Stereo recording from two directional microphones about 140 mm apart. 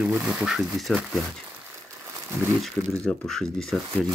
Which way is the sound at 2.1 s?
20° right (ahead or behind).